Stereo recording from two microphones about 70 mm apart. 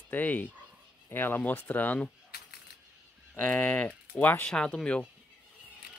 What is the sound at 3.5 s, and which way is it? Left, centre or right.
Speech, centre.